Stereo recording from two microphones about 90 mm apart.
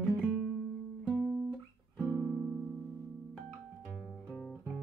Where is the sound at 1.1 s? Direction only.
Centre (ahead or behind).